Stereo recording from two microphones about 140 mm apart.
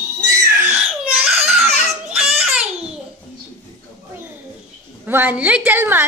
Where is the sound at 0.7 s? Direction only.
10° right (ahead or behind).